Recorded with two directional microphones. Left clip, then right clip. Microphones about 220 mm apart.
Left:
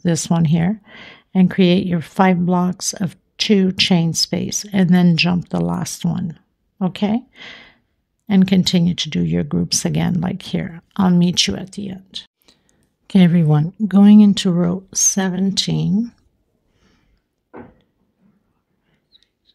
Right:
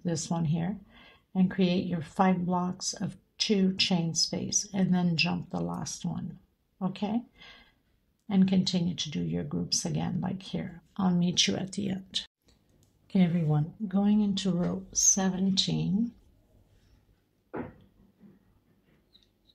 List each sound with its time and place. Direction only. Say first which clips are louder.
0.0 s speech: left 13 dB; 50° left (ahead or behind); by 12.3 s 20° left (ahead or behind)
12.5 s clicking: left 13 dB; 40° left (ahead or behind)
13.0 s speech: left 13 dB; 45° left (ahead or behind)